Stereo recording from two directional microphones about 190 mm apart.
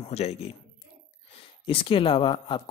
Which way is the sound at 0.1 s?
35° left (ahead or behind).